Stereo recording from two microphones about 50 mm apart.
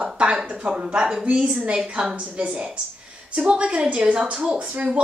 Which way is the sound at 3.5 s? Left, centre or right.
Right.